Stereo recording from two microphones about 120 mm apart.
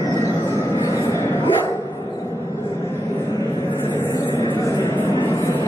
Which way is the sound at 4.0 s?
25° left (ahead or behind).